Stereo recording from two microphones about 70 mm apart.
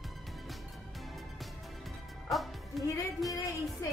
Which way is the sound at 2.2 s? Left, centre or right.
Centre.